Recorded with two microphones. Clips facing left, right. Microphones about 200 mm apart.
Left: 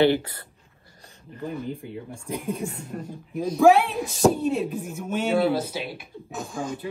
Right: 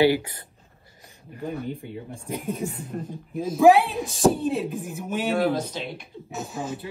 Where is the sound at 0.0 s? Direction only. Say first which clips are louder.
Even; 10° right (ahead or behind).